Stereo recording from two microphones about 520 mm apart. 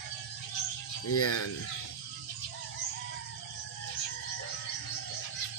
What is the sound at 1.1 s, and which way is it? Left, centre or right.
Speech, left.